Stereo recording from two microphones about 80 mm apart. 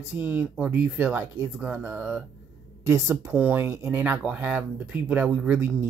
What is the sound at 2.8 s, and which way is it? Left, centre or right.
Speech, right.